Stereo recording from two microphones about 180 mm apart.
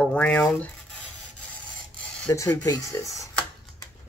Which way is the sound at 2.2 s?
15° left (ahead or behind).